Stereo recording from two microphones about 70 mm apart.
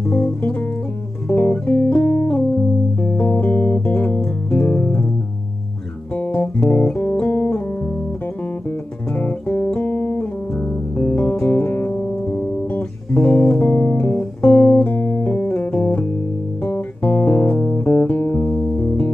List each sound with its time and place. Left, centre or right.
0.1 s music: left
1.3 s guitar: left
3.0 s music: left
6.1 s music: left
9.1 s music: left